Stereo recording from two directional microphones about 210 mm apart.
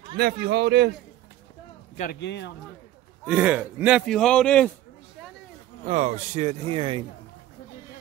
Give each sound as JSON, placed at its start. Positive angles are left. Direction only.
{"t": 0.2, "sound": "a man's voice", "side_deg": -55}
{"t": 2.1, "sound": "speech", "side_deg": 55}
{"t": 3.3, "sound": "a man's voice", "side_deg": -5}
{"t": 5.9, "sound": "speech", "side_deg": -35}